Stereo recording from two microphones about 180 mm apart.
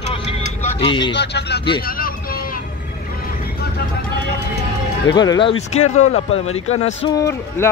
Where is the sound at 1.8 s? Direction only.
55° left (ahead or behind).